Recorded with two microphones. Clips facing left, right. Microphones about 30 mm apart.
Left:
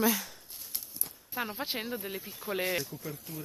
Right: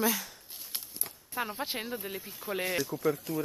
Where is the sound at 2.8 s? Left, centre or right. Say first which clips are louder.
Right 10 dB; right.